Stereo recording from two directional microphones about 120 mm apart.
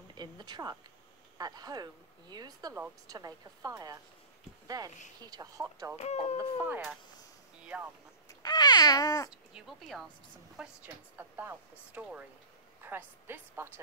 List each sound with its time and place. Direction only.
0.1 s speech: 35° right (ahead or behind)
5.9 s speech: 65° left (ahead or behind)
7.6 s speech: 10° right (ahead or behind)
8.3 s babbling: 30° left (ahead or behind)
9.3 s speech: 5° right (ahead or behind)
10.6 s a woman's voice: 15° right (ahead or behind)